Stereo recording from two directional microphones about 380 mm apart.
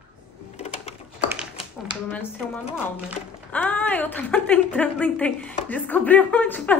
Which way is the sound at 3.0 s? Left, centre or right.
Centre.